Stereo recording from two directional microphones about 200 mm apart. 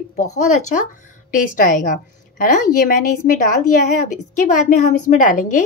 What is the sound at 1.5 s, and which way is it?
A woman's voice, 40° left (ahead or behind).